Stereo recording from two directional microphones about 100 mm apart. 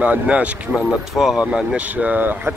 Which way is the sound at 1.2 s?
Centre (ahead or behind).